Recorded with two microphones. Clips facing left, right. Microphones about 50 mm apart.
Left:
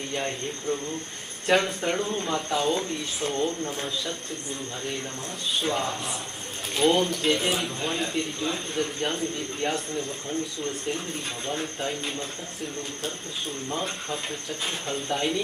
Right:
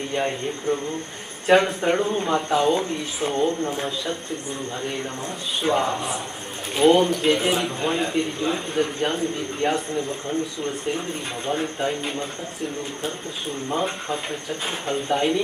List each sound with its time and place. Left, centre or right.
0.1 s speech: centre
5.6 s speech: centre
11.4 s speech: centre
13.7 s speech: centre